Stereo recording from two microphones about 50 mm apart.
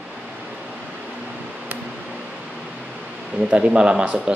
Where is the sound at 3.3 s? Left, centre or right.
Right.